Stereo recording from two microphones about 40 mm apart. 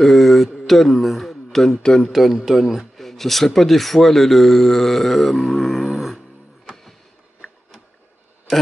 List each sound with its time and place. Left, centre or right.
0.0 s mantra: centre
0.7 s speech: centre
1.7 s speech: centre
2.1 s speech: centre
3.0 s speech: centre
6.7 s music: centre